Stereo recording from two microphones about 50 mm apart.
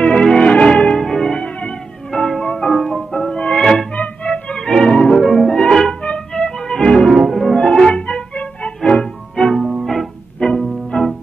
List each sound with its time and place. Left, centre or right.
0.0 s music: centre
3.9 s music: left
4.3 s music: centre
5.2 s music: centre
7.2 s music: centre
7.5 s music: centre
10.9 s music: centre